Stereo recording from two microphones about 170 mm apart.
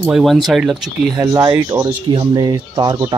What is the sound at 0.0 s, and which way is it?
Speech, centre (ahead or behind).